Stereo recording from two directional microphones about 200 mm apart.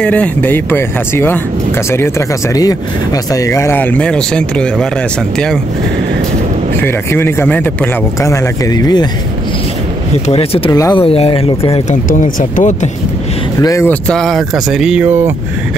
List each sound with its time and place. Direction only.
0.0 s speech: 5° left (ahead or behind)
6.8 s speech: 10° left (ahead or behind)
10.2 s speech: 30° left (ahead or behind)
10.7 s speech: 20° left (ahead or behind)
12.1 s speech: 40° left (ahead or behind)
13.6 s speech: 15° left (ahead or behind); by 15.3 s 10° right (ahead or behind)